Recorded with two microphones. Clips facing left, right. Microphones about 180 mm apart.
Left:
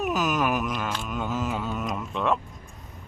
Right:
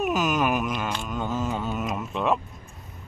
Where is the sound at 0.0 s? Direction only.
Centre (ahead or behind).